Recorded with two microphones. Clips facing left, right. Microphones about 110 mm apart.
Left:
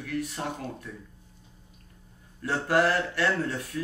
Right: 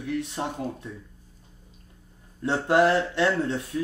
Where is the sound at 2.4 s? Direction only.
25° right (ahead or behind).